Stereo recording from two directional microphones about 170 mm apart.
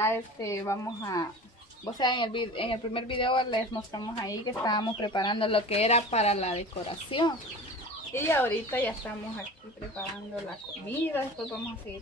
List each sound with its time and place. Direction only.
0.0 s speech: 15° left (ahead or behind); by 6.6 s 40° left (ahead or behind)
7.1 s speech: 30° left (ahead or behind)
8.1 s speech: 15° left (ahead or behind)
10.9 s speech: 10° left (ahead or behind)